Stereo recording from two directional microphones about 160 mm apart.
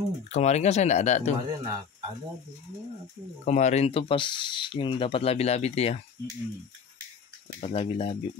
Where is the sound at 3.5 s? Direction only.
45° left (ahead or behind).